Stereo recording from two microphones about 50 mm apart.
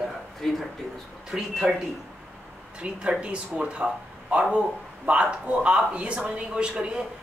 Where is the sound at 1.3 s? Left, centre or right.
Centre.